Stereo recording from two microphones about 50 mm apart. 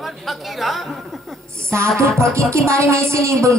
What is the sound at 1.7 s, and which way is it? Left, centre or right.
Speech, right.